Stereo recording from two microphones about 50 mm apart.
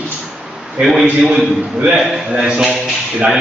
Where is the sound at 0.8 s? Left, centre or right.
Centre.